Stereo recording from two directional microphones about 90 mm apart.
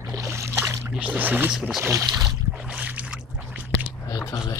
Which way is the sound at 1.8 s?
30° right (ahead or behind).